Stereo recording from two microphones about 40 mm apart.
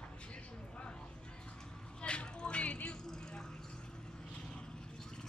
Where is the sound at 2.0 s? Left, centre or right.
Left.